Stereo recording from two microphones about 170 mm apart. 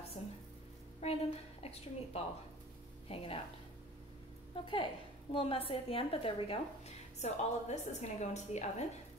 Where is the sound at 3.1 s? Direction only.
35° left (ahead or behind).